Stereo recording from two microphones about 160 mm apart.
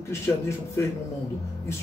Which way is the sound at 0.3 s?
15° left (ahead or behind).